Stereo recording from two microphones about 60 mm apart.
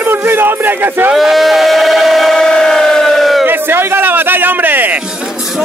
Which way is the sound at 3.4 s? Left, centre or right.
Right.